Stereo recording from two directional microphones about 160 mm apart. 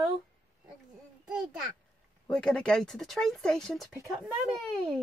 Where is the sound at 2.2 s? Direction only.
5° left (ahead or behind).